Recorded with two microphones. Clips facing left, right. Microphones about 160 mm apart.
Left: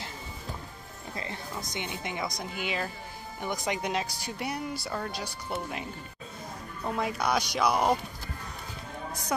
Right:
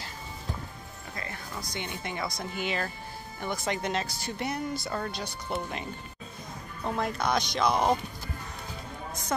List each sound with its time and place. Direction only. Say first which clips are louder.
1.1 s speech: left 2 dB; 25° left (ahead or behind)